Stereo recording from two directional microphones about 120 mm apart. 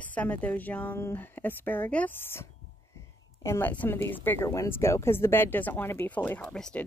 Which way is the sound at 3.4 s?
20° left (ahead or behind).